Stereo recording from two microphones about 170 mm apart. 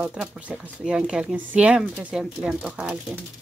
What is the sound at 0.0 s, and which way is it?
Speech, 5° right (ahead or behind).